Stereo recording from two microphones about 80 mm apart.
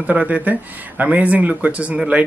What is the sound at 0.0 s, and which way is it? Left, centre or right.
Speech, centre.